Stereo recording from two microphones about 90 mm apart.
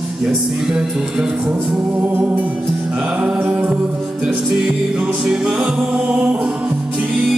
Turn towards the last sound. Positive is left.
turn(degrees=-5)  # may be behind; listen again after turning